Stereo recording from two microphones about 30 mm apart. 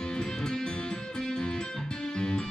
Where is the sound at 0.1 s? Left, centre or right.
Left.